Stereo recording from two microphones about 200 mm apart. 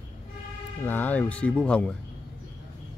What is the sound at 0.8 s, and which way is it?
Speech, 10° left (ahead or behind).